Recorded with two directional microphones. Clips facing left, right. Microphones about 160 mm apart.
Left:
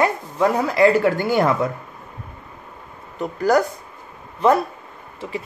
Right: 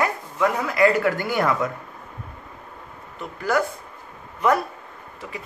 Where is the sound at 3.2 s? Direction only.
40° left (ahead or behind).